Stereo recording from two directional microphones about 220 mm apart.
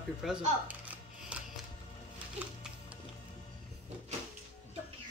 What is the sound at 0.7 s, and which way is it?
Dishes, 5° right (ahead or behind).